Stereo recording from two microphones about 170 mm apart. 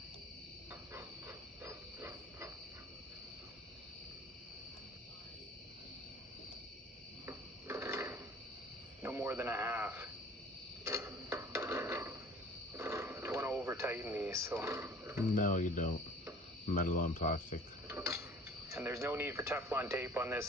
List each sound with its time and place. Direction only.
0.9 s a sound: 15° right (ahead or behind)
7.2 s drawer open or close: 15° right (ahead or behind)
9.0 s a sound: 15° right (ahead or behind)
12.7 s radio: 15° right (ahead or behind)
15.3 s speech: 50° left (ahead or behind)
17.8 s tick-tock: 15° right (ahead or behind)
18.7 s speech: 15° right (ahead or behind)